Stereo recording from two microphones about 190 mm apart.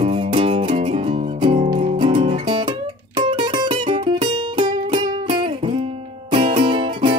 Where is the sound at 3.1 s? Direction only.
25° right (ahead or behind).